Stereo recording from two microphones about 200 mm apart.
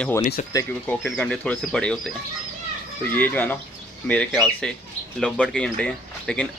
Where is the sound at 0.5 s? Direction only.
20° left (ahead or behind).